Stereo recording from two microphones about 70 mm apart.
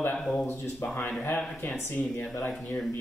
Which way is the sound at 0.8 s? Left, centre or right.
Left.